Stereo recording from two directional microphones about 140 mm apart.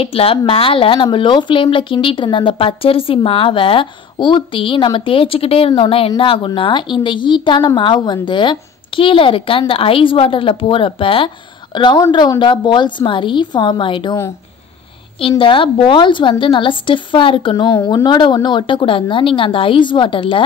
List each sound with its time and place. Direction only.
0.0 s a woman's voice: 45° left (ahead or behind)
15.1 s a woman's voice: 40° left (ahead or behind)